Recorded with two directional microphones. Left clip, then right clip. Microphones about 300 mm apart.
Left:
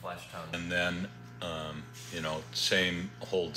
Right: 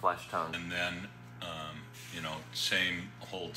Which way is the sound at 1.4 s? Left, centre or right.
Left.